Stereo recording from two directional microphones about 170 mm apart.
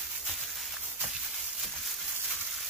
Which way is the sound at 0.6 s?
Centre (ahead or behind).